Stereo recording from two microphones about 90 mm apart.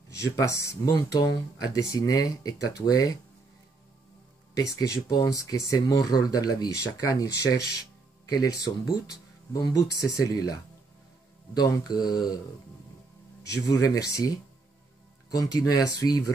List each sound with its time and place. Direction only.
0.4 s speech: 35° left (ahead or behind)
4.6 s speech: 40° left (ahead or behind)
13.5 s speech: 40° left (ahead or behind)